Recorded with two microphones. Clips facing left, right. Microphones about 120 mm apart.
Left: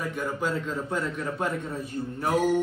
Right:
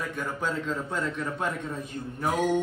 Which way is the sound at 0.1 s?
5° left (ahead or behind).